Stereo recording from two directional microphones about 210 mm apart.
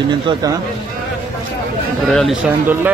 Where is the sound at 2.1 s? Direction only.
Centre (ahead or behind).